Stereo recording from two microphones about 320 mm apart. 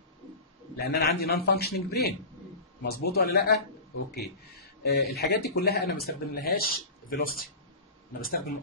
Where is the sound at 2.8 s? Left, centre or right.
Left.